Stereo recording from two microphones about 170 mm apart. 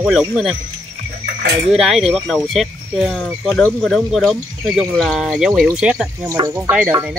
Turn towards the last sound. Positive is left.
turn(degrees=-10)  # may be behind; listen again after turning